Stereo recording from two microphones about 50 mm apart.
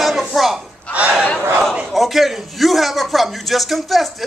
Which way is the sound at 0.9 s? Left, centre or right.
Right.